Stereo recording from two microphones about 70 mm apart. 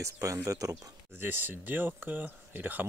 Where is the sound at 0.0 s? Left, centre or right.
Right.